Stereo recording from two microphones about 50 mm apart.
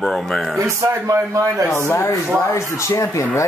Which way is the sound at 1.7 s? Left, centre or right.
Left.